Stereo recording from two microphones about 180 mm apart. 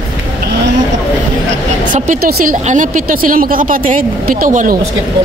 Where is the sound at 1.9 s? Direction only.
45° right (ahead or behind).